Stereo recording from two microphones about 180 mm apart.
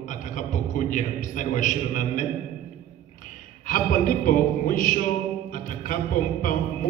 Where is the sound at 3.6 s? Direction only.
50° left (ahead or behind).